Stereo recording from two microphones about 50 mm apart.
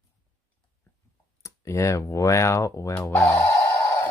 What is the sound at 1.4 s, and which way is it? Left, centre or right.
Speech, left.